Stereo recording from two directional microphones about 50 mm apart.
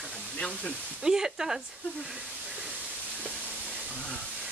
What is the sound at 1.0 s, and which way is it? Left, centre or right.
Speech, centre.